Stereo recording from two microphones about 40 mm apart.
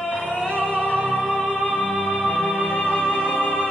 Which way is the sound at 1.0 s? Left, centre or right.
Left.